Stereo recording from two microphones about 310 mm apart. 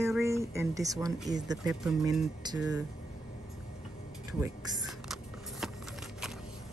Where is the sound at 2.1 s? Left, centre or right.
Centre.